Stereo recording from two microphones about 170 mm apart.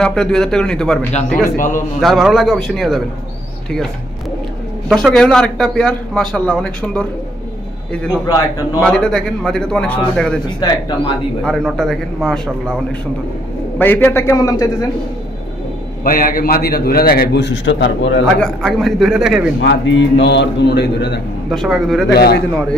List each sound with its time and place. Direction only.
0.0 s a man's voice: 5° left (ahead or behind)
1.4 s a man's voice: 50° left (ahead or behind)
2.0 s a man's voice: centre (ahead or behind)
4.8 s a man's voice: centre (ahead or behind)
8.8 s a man's voice: 5° left (ahead or behind)
10.6 s speech: 25° left (ahead or behind)
11.4 s a man's voice: centre (ahead or behind)
13.7 s a man's voice: 10° left (ahead or behind)
16.0 s a man's voice: 55° left (ahead or behind); by 18.2 s 90° left
18.4 s a man's voice: 5° left (ahead or behind)
19.6 s a man's voice: 90° left
21.5 s a man's voice: centre (ahead or behind)
22.1 s a man's voice: 70° left (ahead or behind)